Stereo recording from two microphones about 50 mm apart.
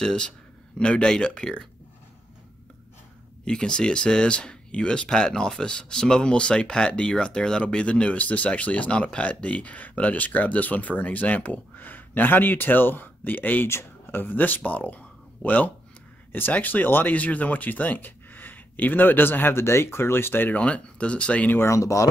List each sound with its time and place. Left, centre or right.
0.0 s speech: centre
3.4 s speech: centre; by 13.7 s left
13.7 s speech: left
14.2 s speech: left
19.5 s speech: left
20.5 s speech: left
21.6 s speech: left